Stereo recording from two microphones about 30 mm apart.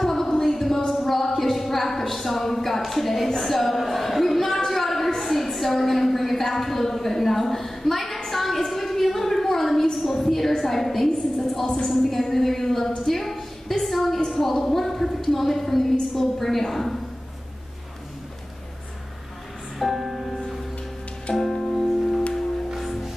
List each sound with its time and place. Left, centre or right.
0.0 s a sound: centre
11.6 s a woman's voice: left
11.9 s a woman's voice: centre
13.0 s a sound: centre
14.3 s a woman's voice: centre
19.8 s music: centre
20.2 s music: centre